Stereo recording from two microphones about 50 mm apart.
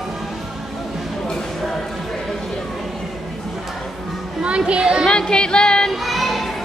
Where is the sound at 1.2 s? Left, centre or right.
Centre.